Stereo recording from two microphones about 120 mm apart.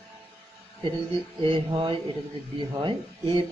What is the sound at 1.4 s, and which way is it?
A man's voice, 45° right (ahead or behind).